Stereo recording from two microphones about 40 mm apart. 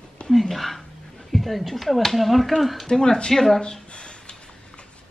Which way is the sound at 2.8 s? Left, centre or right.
Centre.